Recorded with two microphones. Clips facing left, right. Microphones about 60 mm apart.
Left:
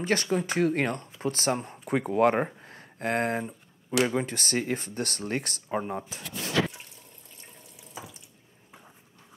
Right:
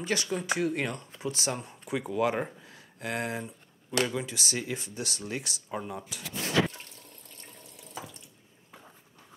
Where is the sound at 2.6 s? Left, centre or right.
Left.